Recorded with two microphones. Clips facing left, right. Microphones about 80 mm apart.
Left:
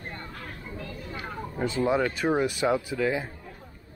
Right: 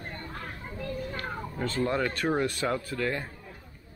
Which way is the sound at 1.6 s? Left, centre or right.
Centre.